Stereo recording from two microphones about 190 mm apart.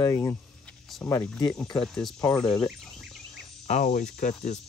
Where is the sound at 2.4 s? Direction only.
20° left (ahead or behind).